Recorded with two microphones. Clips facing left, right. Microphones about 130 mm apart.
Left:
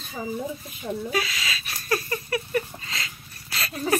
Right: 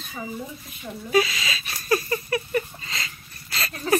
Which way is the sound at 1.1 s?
Centre (ahead or behind).